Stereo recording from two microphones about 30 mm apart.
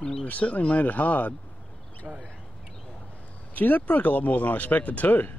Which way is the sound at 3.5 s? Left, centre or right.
Left.